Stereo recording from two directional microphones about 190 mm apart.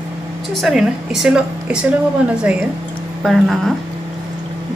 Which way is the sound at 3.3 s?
Centre (ahead or behind).